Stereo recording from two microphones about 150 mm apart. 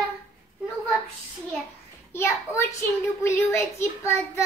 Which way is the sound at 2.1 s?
15° left (ahead or behind).